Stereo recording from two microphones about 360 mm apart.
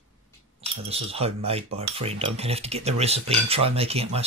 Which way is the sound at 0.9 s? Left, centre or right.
Centre.